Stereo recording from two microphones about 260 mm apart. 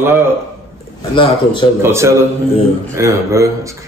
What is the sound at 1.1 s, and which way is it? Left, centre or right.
Music, centre.